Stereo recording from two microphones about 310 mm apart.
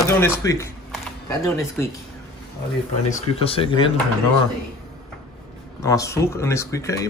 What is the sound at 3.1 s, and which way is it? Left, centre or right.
Speech, centre.